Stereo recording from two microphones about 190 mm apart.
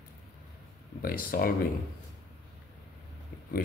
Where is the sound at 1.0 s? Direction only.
50° left (ahead or behind).